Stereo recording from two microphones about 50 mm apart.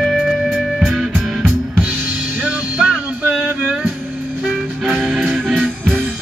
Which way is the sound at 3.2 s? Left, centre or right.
Right.